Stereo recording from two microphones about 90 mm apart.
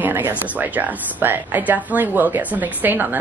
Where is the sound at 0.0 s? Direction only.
20° right (ahead or behind).